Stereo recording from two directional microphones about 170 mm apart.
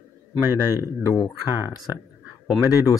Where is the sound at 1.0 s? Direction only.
20° left (ahead or behind).